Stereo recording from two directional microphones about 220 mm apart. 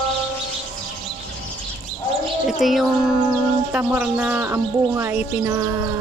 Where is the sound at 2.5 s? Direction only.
Centre (ahead or behind).